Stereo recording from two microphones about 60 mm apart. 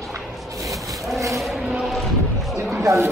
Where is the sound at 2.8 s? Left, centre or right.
Right.